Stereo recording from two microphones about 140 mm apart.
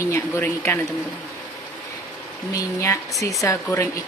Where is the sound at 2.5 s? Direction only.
20° left (ahead or behind).